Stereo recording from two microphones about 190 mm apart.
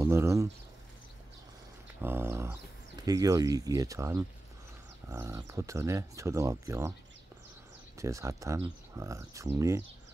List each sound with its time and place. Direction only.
0.0 s a sound: 15° right (ahead or behind)
2.0 s dog: 10° right (ahead or behind)
3.0 s speech: 20° right (ahead or behind)
8.0 s speech: 15° right (ahead or behind)